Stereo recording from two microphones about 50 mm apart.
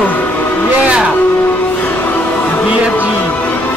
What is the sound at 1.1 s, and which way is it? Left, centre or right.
Music, left.